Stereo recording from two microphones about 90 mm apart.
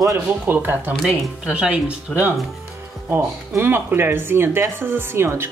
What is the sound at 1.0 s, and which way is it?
Speech, 10° right (ahead or behind).